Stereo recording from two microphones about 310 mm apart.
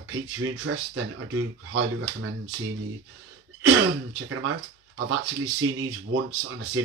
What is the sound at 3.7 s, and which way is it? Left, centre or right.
Speech, right.